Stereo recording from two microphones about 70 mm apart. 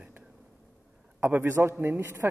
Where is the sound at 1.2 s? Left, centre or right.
Right.